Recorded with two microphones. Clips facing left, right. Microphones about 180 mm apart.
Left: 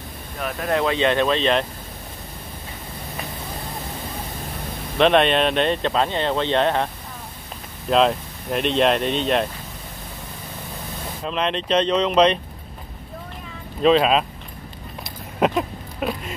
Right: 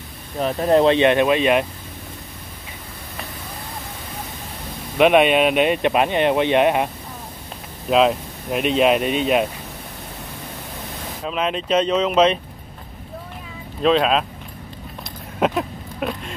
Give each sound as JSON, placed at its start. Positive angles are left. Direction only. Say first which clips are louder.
{"t": 0.4, "sound": "speech", "louder": "right 7 dB", "side_deg": -30}
{"t": 0.9, "sound": "speech", "louder": "right 4 dB", "side_deg": -15}
{"t": 4.9, "sound": "speech", "louder": "right 2 dB", "side_deg": -10}
{"t": 7.9, "sound": "speech", "louder": "right 1 dB", "side_deg": -5}
{"t": 11.2, "sound": "speech", "louder": "right 1 dB", "side_deg": -5}
{"t": 13.8, "sound": "speech", "louder": "left 1 dB", "side_deg": 0}
{"t": 15.3, "sound": "a sound", "louder": "even", "side_deg": 0}